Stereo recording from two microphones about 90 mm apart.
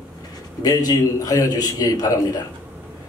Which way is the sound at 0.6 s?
45° left (ahead or behind).